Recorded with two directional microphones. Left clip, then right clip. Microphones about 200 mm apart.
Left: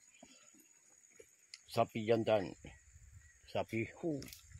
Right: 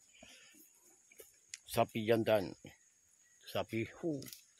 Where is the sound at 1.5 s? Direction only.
10° right (ahead or behind).